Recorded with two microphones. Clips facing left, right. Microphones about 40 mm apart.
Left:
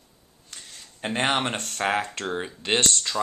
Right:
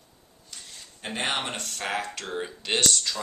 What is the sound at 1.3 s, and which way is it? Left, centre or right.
Speech, left.